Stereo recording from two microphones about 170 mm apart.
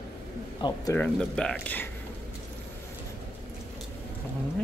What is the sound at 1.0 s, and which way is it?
Speech, 5° left (ahead or behind).